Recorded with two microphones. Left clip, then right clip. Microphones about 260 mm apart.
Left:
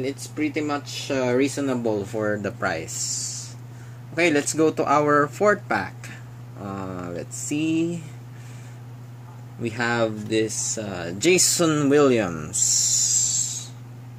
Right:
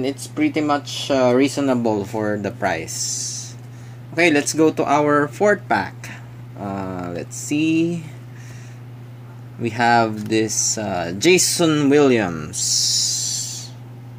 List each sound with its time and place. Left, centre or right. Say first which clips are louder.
0.0 s speech: right 5 dB; right; by 6.1 s centre
6.6 s a sound: right 5 dB; centre
9.6 s speech: right 7 dB; centre